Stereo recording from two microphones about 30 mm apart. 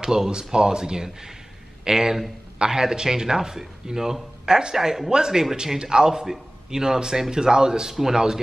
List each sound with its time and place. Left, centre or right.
0.0 s a man's voice: right
5.1 s a man's voice: right